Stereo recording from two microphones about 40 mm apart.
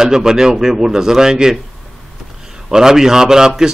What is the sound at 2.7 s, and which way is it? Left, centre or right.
A man's voice, centre.